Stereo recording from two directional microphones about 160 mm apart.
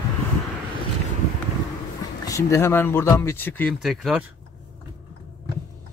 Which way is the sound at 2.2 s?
20° left (ahead or behind).